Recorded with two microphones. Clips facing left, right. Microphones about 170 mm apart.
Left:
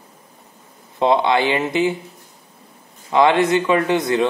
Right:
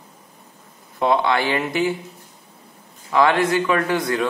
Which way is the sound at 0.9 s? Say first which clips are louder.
Left 3 dB; 20° left (ahead or behind).